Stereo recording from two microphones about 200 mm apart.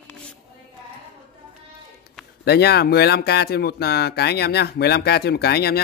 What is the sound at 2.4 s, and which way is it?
Speech, 55° left (ahead or behind).